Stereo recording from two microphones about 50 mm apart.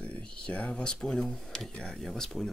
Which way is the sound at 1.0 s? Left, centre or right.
Centre.